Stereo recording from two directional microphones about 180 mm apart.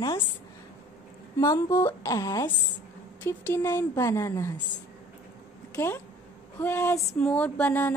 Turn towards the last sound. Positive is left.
turn(degrees=10)  # may be behind; listen again after turning